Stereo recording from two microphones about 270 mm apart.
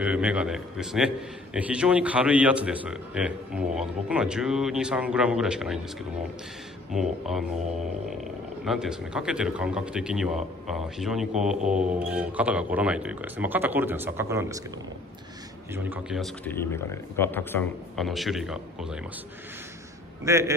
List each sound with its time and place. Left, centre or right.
0.0 s a man's voice: centre
7.0 s a man's voice: centre
8.6 s a man's voice: centre
11.6 s mantra: right
11.9 s a man's voice: centre
15.7 s a man's voice: centre
20.2 s speech: centre